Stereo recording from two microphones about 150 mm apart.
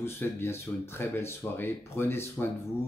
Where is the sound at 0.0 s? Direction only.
15° left (ahead or behind).